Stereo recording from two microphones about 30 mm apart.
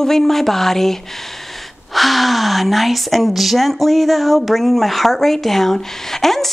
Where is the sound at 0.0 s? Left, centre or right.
Centre.